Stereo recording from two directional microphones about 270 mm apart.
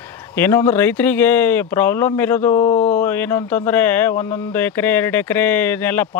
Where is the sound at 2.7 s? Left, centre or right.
Left.